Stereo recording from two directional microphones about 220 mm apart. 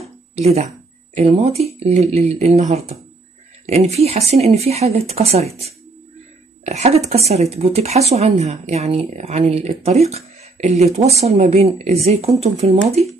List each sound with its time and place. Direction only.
0.4 s speech: 30° right (ahead or behind)
6.6 s speech: 30° right (ahead or behind)